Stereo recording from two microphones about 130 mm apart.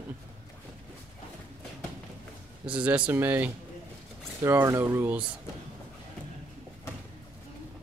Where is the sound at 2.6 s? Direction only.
10° right (ahead or behind).